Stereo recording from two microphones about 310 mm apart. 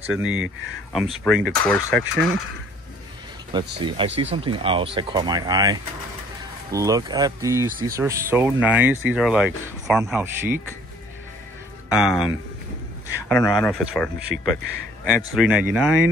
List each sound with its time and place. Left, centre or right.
0.1 s speech: centre
3.5 s speech: centre
11.9 s speech: centre
13.3 s speech: centre